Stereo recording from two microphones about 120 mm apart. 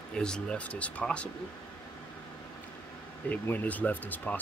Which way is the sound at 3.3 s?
15° left (ahead or behind).